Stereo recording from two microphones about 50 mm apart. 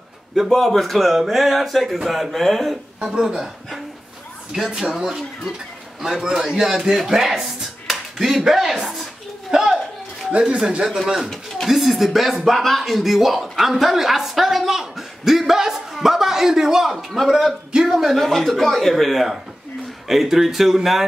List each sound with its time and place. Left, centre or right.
0.5 s a man's voice: centre
3.0 s speech: centre
4.6 s a man's voice: centre
6.0 s speech: centre
9.5 s a sound: centre
10.4 s speech: right
11.6 s a man's voice: centre
16.8 s a man's voice: centre